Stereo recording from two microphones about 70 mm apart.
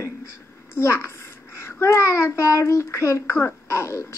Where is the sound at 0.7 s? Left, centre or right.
Left.